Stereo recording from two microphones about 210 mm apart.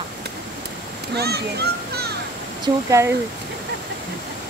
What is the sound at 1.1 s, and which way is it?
A child's voice, 50° right (ahead or behind).